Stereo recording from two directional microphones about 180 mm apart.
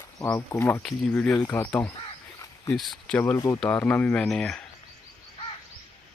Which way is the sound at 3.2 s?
15° left (ahead or behind).